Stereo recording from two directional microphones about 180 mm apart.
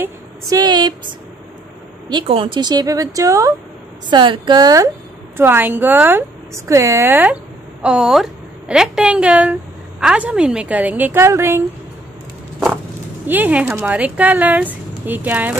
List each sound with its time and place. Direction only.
0.0 s speech: 20° right (ahead or behind)
2.0 s a woman's voice: 30° right (ahead or behind)
13.3 s speech: 10° right (ahead or behind)